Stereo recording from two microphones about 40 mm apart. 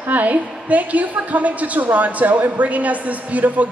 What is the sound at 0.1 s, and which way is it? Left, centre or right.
A woman's voice, right.